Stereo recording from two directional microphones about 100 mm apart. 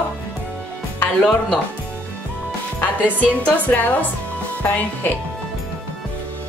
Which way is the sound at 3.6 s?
15° left (ahead or behind).